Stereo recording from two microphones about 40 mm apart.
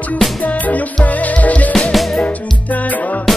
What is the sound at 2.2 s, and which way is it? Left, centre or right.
Music, left.